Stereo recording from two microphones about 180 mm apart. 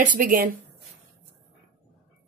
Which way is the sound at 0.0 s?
50° right (ahead or behind).